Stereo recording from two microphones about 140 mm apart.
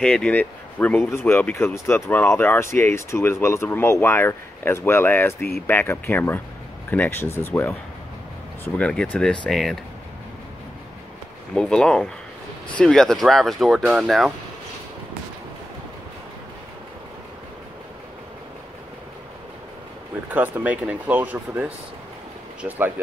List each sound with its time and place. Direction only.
0.0 s speech: 5° left (ahead or behind)
11.5 s speech: 5° left (ahead or behind)
20.2 s speech: 10° right (ahead or behind)